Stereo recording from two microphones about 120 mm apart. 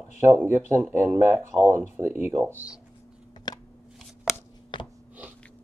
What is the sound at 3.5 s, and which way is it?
Shuffling cards, 35° left (ahead or behind).